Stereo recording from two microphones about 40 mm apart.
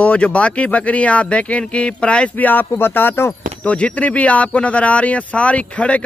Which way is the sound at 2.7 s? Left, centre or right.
Left.